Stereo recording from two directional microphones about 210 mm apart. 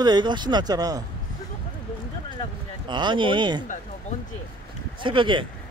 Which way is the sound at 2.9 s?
20° right (ahead or behind).